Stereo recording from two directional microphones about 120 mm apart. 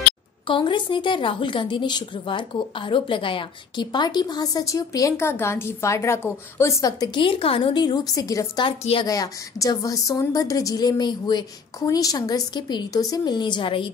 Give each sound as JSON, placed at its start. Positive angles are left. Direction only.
{"t": 0.5, "sound": "a woman's voice", "side_deg": 45}
{"t": 7.2, "sound": "a woman's voice", "side_deg": 50}
{"t": 8.6, "sound": "a woman's voice", "side_deg": 50}
{"t": 9.0, "sound": "a woman's voice", "side_deg": 30}